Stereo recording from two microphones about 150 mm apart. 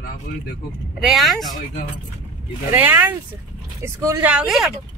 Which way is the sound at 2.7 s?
10° right (ahead or behind).